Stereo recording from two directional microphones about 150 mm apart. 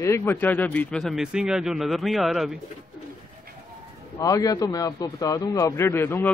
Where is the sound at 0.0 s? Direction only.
20° left (ahead or behind); by 2.6 s centre (ahead or behind).